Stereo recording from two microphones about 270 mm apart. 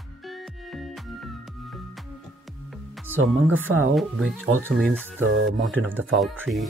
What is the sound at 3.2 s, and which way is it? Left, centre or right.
Speech, right.